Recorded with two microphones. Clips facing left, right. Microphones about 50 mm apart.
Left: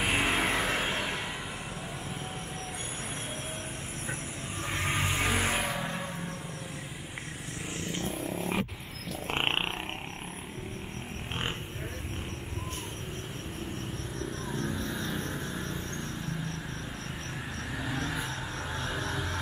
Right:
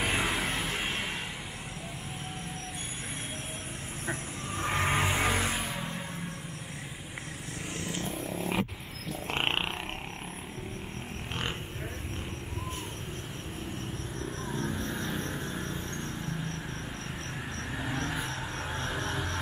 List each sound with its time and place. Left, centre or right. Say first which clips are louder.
0.0 s vehicle: left 1 dB; centre
0.3 s vehicle: left 3 dB; left
0.6 s vehicle: left 4 dB; left
4.6 s vehicle: right 4 dB; centre
7.8 s vehicle: left 2 dB; centre
9.4 s purr: even; centre
14.4 s vehicle: right 1 dB; right
16.0 s vehicle: even; right
17.8 s vehicle: even; right